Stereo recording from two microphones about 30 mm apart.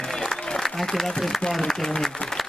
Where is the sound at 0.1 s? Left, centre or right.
Centre.